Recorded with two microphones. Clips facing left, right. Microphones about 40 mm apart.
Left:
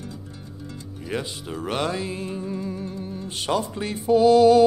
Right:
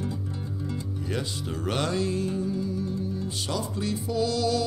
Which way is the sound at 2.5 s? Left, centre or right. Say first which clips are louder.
Right 1 dB; left.